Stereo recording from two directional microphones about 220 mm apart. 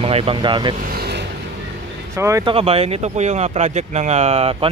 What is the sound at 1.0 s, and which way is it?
Vehicle, 50° right (ahead or behind).